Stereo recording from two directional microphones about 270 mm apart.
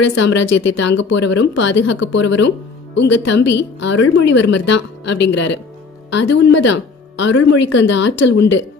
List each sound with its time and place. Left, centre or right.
0.0 s speech: left